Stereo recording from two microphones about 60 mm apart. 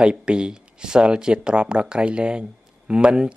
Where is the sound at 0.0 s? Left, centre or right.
Centre.